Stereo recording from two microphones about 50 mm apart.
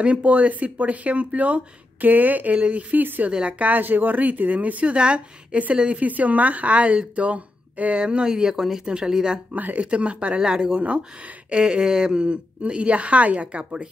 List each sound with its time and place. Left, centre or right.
0.0 s speech: right
3.3 s speech: right
9.5 s speech: right
10.4 s speech: centre
10.8 s speech: right